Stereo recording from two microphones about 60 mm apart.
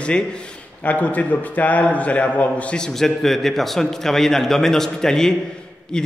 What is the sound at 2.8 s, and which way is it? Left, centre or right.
A man's voice, centre.